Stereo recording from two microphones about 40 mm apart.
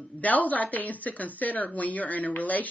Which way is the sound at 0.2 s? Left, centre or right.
Left.